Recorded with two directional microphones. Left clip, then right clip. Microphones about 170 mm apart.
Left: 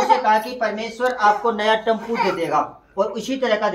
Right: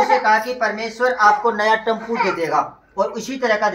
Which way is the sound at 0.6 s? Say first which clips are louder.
Right 2 dB; 20° left (ahead or behind).